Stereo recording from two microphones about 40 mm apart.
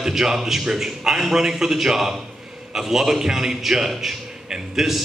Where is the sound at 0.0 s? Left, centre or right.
Centre.